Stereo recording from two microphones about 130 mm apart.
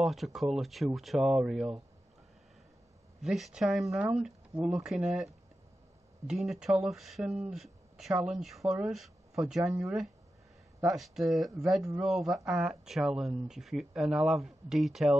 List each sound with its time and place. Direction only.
0.0 s speech: centre (ahead or behind)
3.2 s speech: centre (ahead or behind)